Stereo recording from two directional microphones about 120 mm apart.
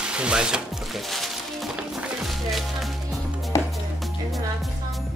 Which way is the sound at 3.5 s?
20° left (ahead or behind).